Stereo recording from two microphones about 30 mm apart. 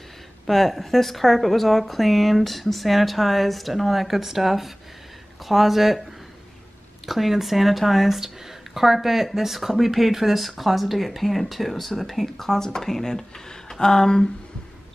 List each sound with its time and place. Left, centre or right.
0.5 s speech: centre
7.1 s speech: centre
13.7 s a sound: centre